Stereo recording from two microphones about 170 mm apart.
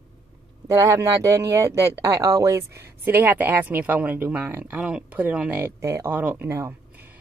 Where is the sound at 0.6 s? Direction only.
20° right (ahead or behind).